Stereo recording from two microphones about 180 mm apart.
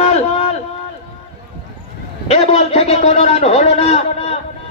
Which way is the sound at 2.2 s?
35° left (ahead or behind).